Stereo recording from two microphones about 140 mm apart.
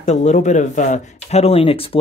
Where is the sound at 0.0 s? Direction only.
55° left (ahead or behind).